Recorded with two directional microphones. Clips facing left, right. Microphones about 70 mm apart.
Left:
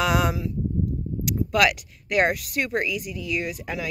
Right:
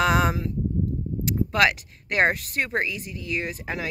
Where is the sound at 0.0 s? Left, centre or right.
Right.